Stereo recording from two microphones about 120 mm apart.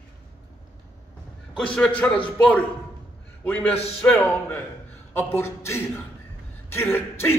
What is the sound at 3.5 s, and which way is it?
Speech, 15° left (ahead or behind).